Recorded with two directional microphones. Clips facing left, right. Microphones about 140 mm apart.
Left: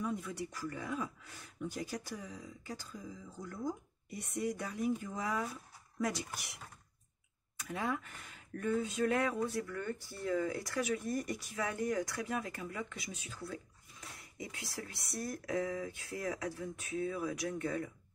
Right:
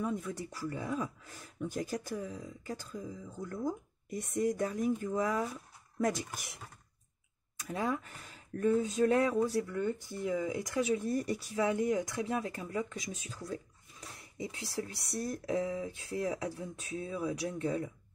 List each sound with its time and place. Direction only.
0.0 s speech: 45° right (ahead or behind)
7.6 s speech: 35° right (ahead or behind)
9.8 s speech: 20° right (ahead or behind); by 13.6 s 40° right (ahead or behind)
14.0 s speech: 25° right (ahead or behind)